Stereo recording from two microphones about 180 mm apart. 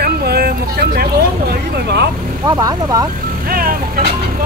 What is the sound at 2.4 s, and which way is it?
Speech, 20° right (ahead or behind).